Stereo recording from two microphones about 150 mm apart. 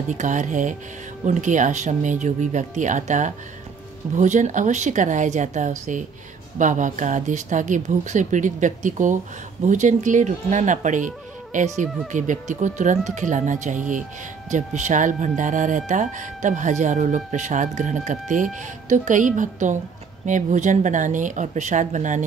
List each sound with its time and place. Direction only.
0.1 s speech: 55° right (ahead or behind)